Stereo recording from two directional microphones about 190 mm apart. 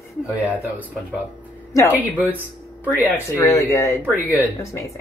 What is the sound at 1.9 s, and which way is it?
Speech, 10° right (ahead or behind).